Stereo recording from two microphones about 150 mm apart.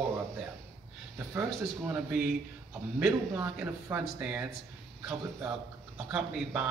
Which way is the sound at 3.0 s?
20° right (ahead or behind).